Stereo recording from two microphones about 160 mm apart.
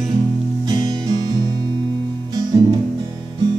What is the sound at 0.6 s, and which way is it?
Music, 25° right (ahead or behind).